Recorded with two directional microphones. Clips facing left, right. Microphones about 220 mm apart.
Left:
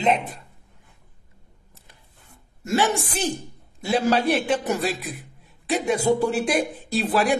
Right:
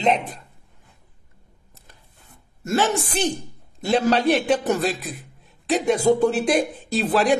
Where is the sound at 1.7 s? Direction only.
40° right (ahead or behind).